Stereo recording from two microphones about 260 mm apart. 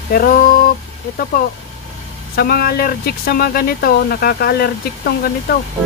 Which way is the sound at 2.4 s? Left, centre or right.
Left.